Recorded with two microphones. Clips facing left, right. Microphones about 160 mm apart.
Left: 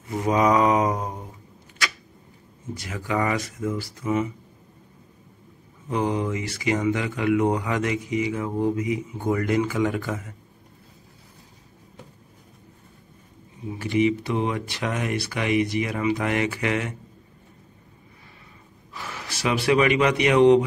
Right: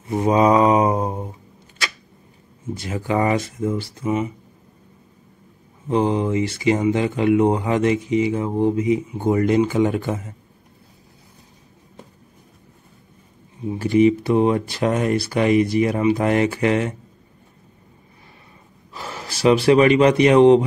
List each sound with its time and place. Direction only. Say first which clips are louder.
0.0 s mantra: right 5 dB; 25° right (ahead or behind)
2.7 s speech: right 5 dB; 30° right (ahead or behind)
5.9 s speech: right 5 dB; 30° right (ahead or behind)
13.7 s speech: right 6 dB; 35° right (ahead or behind)
18.9 s speech: right 4 dB; 30° right (ahead or behind)